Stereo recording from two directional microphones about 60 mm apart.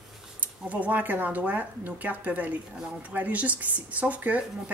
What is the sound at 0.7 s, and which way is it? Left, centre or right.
Speech, right.